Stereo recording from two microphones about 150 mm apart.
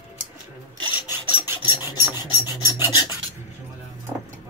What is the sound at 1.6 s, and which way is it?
Filing, 25° left (ahead or behind).